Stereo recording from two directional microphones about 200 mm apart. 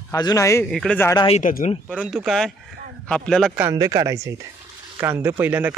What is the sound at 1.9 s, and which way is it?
Speech, 5° left (ahead or behind).